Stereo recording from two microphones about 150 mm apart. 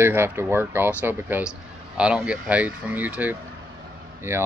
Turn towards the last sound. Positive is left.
turn(degrees=-15)  # may be behind; listen again after turning